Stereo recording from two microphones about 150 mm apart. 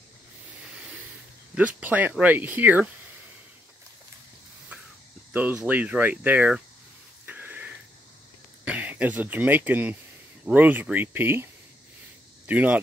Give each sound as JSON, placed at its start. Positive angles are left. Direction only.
{"t": 1.5, "sound": "speech", "side_deg": -10}
{"t": 4.7, "sound": "snake", "side_deg": -10}
{"t": 5.3, "sound": "speech", "side_deg": -10}
{"t": 7.2, "sound": "a sound", "side_deg": -10}
{"t": 8.6, "sound": "speech", "side_deg": -10}
{"t": 12.4, "sound": "speech", "side_deg": -10}